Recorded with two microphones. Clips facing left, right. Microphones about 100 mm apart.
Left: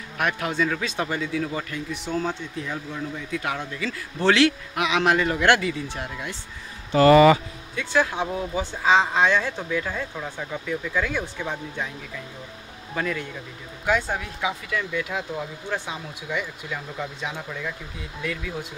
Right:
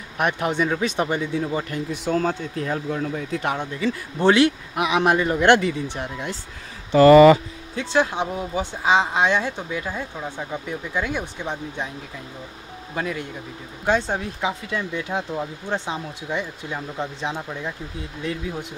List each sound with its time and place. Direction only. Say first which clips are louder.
0.2 s speech: right 3 dB; 20° right (ahead or behind)
1.7 s speech: right 5 dB; 40° right (ahead or behind)
3.3 s speech: right 1 dB; 35° right (ahead or behind)
3.5 s speech: right 5 dB; 20° right (ahead or behind)
7.7 s speech: right 2 dB; 25° right (ahead or behind)
12.9 s speech: even; 20° right (ahead or behind)